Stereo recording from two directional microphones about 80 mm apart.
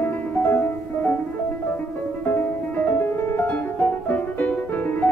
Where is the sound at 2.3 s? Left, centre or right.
Left.